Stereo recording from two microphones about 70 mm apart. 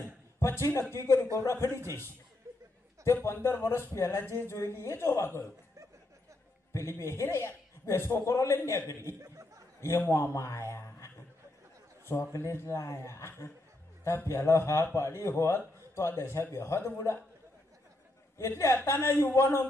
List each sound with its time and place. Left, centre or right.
0.4 s a man's voice: left
1.8 s a man's voice: right
3.3 s a man's voice: left
6.7 s a man's voice: left
9.2 s a sound: right
9.8 s a man's voice: left
12.1 s a man's voice: left
18.4 s a man's voice: left